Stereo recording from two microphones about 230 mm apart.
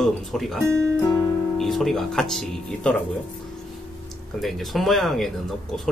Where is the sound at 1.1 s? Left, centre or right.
Centre.